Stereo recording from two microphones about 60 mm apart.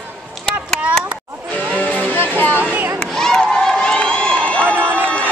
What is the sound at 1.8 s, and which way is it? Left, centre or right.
Music, left.